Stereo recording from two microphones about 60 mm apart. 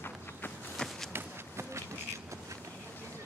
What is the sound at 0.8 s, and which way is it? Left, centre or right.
Walk, centre.